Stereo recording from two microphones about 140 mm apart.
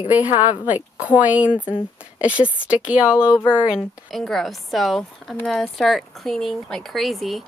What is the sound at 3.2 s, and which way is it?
Speech, 20° left (ahead or behind).